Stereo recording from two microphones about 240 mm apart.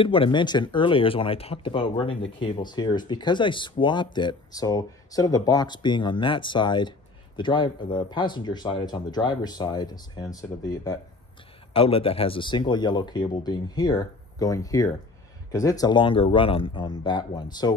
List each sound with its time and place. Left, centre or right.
0.0 s speech: left